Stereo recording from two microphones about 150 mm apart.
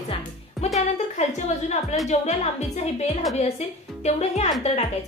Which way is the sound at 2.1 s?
50° left (ahead or behind).